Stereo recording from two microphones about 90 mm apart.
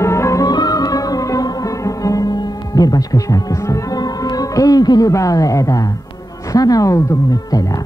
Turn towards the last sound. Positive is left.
turn(degrees=40)  # may be behind; listen again after turning